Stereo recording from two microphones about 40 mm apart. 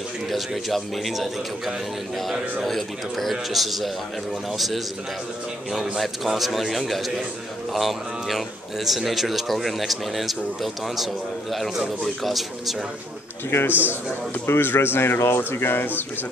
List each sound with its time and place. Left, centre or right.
0.3 s a man's voice: centre
2.6 s a man's voice: centre
5.9 s a man's voice: centre
12.2 s a man's voice: centre
13.5 s speech: left
14.4 s speech: left